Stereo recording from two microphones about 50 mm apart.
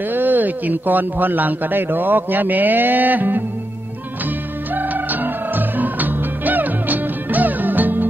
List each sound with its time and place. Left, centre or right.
0.1 s a man's voice: right
4.7 s music: right